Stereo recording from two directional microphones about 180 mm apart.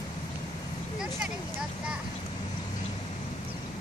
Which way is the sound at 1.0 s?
5° right (ahead or behind).